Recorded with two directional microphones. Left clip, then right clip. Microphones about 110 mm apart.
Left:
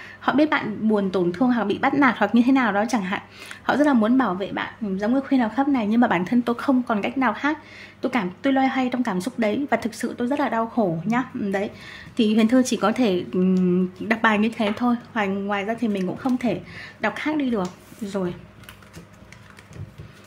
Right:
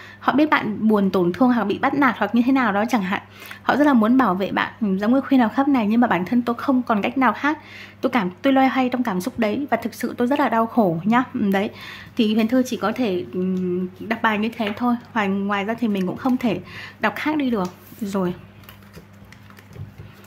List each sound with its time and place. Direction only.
0.2 s a woman's voice: 15° right (ahead or behind)
6.8 s a woman's voice: 20° right (ahead or behind)
10.1 s a woman's voice: 25° right (ahead or behind)
12.2 s a woman's voice: 5° right (ahead or behind)
12.4 s speech: 5° left (ahead or behind)
14.0 s speech: 5° left (ahead or behind)
15.1 s a woman's voice: 15° right (ahead or behind)